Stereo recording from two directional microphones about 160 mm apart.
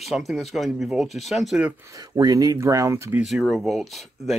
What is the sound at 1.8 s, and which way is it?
Speech, 20° right (ahead or behind).